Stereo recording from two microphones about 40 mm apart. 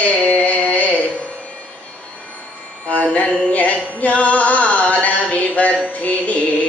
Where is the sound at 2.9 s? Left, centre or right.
Left.